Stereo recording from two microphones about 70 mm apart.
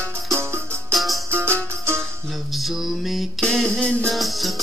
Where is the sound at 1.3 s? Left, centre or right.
Right.